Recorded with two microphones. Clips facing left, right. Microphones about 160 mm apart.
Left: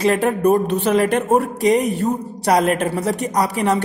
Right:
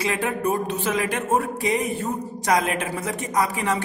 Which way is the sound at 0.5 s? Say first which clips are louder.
Left 9 dB; 70° left (ahead or behind).